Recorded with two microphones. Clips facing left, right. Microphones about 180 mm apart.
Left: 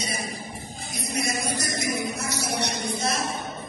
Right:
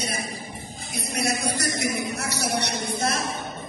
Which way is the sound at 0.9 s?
65° right (ahead or behind).